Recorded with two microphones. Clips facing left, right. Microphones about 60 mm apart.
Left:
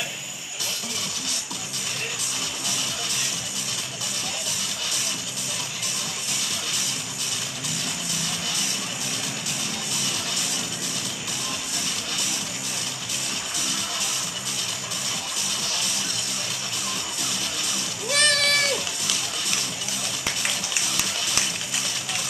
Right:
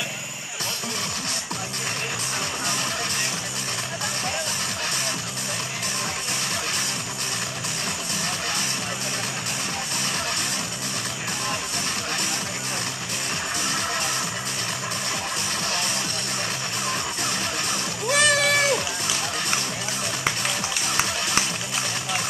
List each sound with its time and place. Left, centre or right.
18.1 s splash: centre
20.9 s music: right